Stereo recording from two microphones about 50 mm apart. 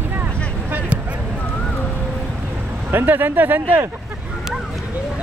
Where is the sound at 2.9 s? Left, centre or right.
Right.